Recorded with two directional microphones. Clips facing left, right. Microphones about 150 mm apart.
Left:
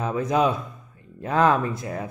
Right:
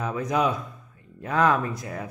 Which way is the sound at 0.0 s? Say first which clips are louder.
Left 3 dB; 25° left (ahead or behind).